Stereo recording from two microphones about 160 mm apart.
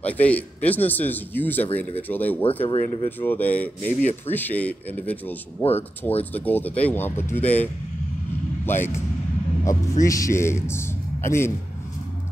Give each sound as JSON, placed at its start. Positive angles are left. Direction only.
{"t": 0.0, "sound": "speech", "side_deg": 10}
{"t": 2.4, "sound": "speech", "side_deg": 35}
{"t": 3.1, "sound": "speech", "side_deg": 10}
{"t": 5.6, "sound": "speech", "side_deg": 40}
{"t": 6.3, "sound": "speech", "side_deg": 10}
{"t": 10.0, "sound": "a man's voice", "side_deg": 20}